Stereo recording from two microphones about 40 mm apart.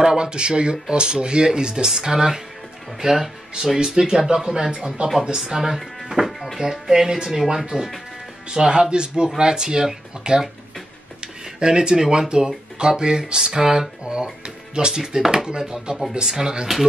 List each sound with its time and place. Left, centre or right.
0.0 s speech: centre
5.6 s speech: centre
11.6 s speech: right
15.0 s speech: centre